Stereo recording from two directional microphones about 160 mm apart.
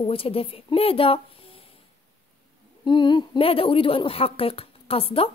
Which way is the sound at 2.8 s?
30° left (ahead or behind).